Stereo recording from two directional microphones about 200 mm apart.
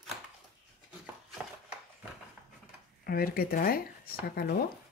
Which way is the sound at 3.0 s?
45° left (ahead or behind).